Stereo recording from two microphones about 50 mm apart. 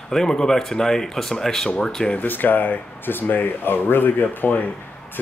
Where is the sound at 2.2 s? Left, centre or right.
Left.